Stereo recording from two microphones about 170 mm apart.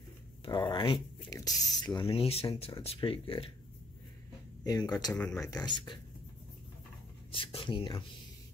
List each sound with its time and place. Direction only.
0.5 s a sound: 25° left (ahead or behind)
1.7 s speech: 20° left (ahead or behind)
2.0 s speech: 35° left (ahead or behind)
4.6 s speech: 25° left (ahead or behind)
5.1 s speech: 10° left (ahead or behind); by 5.9 s 25° left (ahead or behind)
7.3 s speech: 30° left (ahead or behind)